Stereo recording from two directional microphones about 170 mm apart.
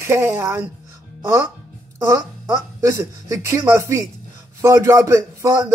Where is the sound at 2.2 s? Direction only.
20° right (ahead or behind).